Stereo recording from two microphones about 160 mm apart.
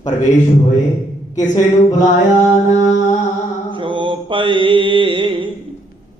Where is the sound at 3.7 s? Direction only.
30° right (ahead or behind).